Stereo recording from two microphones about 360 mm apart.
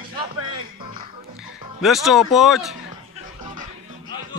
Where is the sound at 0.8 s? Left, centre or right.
Centre.